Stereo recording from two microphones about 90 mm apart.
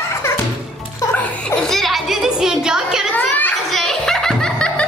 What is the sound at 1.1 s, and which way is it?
Music, 15° left (ahead or behind).